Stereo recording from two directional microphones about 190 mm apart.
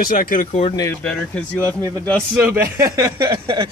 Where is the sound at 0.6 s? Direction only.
20° left (ahead or behind).